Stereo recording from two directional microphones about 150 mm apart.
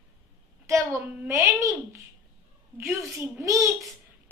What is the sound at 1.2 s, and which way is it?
Speech, 20° right (ahead or behind).